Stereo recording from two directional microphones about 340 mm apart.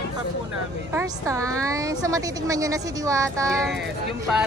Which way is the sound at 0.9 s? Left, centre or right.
Centre.